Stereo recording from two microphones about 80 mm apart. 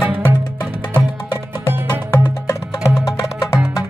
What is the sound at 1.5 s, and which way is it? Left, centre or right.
Music, right.